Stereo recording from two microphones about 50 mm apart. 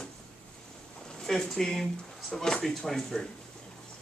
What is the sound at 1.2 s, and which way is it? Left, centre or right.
Speech, centre.